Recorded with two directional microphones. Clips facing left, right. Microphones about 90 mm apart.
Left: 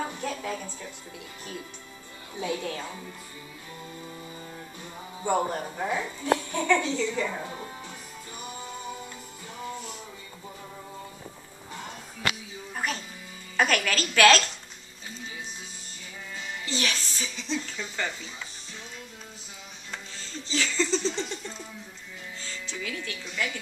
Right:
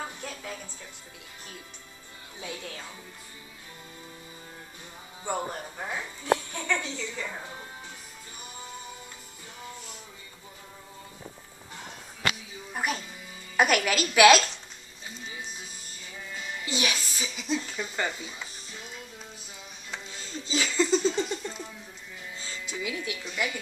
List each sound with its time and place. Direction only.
0.0 s music: 90° left
2.4 s speech: 85° left
5.3 s a woman's voice: 90° left
12.7 s music: 10° right (ahead or behind)
13.6 s speech: 10° right (ahead or behind)
16.3 s speech: 15° right (ahead or behind)
20.2 s speech: 15° right (ahead or behind)